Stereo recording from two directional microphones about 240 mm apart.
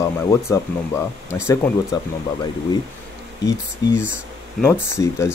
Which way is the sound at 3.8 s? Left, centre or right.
Centre.